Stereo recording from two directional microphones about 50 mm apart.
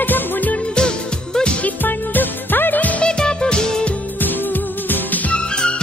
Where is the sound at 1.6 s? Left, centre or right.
Left.